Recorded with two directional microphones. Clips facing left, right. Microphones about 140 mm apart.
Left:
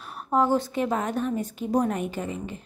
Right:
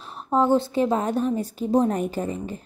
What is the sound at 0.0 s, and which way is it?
A woman's voice, 25° right (ahead or behind).